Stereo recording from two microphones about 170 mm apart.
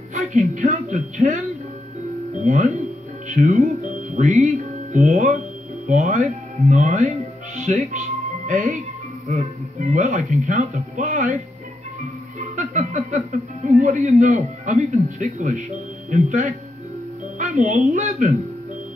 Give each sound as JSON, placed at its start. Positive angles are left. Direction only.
{"t": 0.1, "sound": "speech", "side_deg": -45}
{"t": 2.4, "sound": "speech", "side_deg": -45}
{"t": 12.4, "sound": "speech", "side_deg": -50}